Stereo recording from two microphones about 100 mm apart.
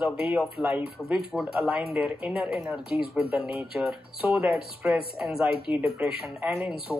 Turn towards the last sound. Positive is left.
turn(degrees=15)  # may be behind; listen again after turning